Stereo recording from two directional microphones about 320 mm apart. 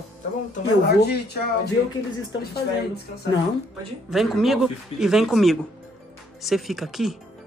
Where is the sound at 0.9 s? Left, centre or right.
Left.